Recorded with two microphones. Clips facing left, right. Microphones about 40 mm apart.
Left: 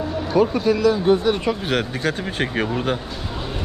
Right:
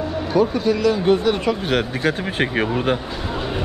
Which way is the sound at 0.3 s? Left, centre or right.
Left.